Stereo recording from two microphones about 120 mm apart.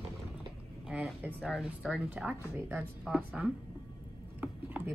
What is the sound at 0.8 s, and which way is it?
Speech, 10° right (ahead or behind).